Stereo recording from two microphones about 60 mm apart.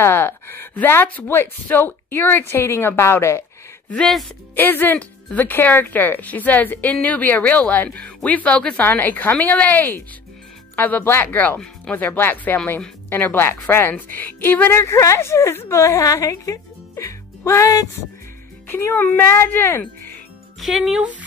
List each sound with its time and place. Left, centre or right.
0.0 s a woman's voice: left
4.6 s a woman's voice: left
13.9 s a woman's voice: left
14.8 s a woman's voice: left
18.7 s speech: left
19.3 s a woman's voice: left
20.6 s speech: centre